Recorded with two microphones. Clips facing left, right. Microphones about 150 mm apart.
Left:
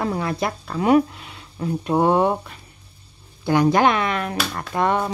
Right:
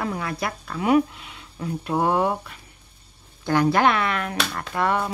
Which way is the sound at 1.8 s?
25° left (ahead or behind).